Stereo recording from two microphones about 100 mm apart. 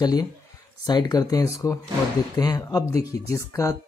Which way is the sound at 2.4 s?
40° left (ahead or behind).